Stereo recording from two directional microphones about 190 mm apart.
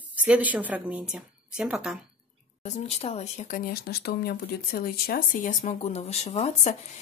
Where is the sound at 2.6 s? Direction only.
35° left (ahead or behind).